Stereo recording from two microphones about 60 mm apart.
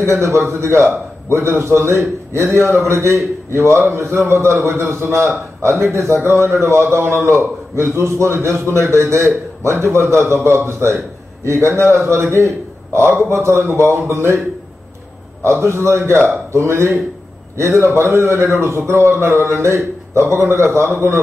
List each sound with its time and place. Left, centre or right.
0.0 s a man's voice: right
15.4 s a man's voice: right